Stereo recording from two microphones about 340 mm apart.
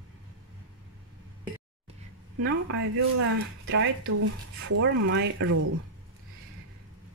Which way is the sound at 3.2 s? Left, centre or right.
Right.